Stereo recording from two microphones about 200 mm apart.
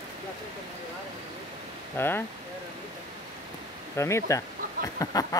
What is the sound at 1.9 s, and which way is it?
Speech, 10° left (ahead or behind).